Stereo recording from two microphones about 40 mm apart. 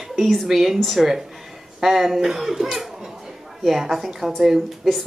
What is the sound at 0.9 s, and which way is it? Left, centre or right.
A child's voice, centre.